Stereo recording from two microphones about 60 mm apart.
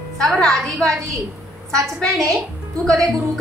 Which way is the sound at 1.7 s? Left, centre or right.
Right.